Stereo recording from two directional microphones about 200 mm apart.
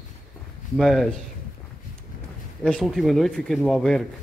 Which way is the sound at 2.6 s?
5° left (ahead or behind).